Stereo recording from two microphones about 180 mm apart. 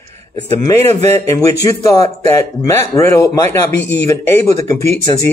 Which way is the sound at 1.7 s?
20° left (ahead or behind).